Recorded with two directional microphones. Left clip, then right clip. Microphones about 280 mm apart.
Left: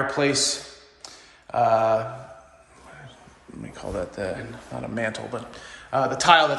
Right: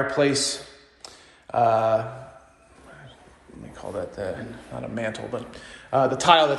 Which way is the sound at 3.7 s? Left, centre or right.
Left.